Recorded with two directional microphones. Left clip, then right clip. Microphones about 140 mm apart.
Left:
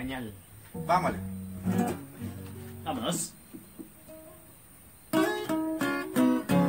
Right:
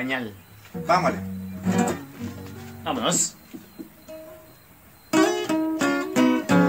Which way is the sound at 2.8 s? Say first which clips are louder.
Right 8 dB; 35° right (ahead or behind).